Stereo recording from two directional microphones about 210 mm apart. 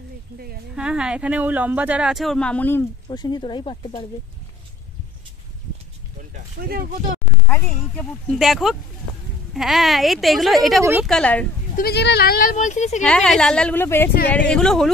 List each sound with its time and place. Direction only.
0.7 s speech: 5° right (ahead or behind)
3.1 s speech: 20° left (ahead or behind)
6.3 s speech: 45° right (ahead or behind)
7.4 s speech: 5° left (ahead or behind)
10.8 s a woman's voice: 10° right (ahead or behind)
11.1 s speech: 5° left (ahead or behind)
11.7 s speech: 50° left (ahead or behind)
13.0 s speech: 5° left (ahead or behind)